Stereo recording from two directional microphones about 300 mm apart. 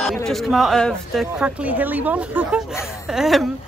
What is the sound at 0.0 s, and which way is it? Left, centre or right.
A woman's voice, centre.